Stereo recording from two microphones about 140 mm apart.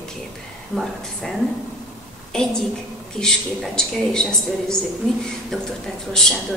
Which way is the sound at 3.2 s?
5° left (ahead or behind).